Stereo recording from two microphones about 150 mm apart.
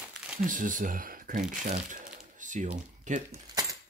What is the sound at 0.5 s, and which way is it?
Speech, 60° right (ahead or behind).